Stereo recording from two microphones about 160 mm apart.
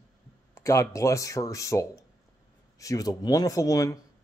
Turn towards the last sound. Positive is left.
turn(degrees=20)  # may be behind; listen again after turning